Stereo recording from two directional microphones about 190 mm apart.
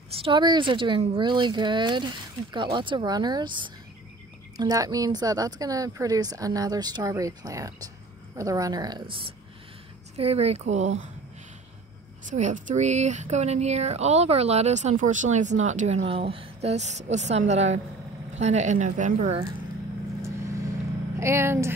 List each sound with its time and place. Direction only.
0.1 s speech: 25° right (ahead or behind)
10.1 s speech: 30° right (ahead or behind)
12.3 s speech: 40° right (ahead or behind)
20.2 s vehicle: 15° right (ahead or behind)
21.2 s speech: 15° right (ahead or behind)